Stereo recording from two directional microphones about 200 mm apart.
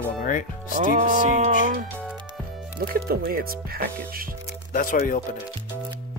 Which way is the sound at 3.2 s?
50° right (ahead or behind).